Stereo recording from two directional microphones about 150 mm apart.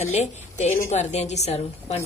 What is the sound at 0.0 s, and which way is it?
A woman's voice, 50° left (ahead or behind).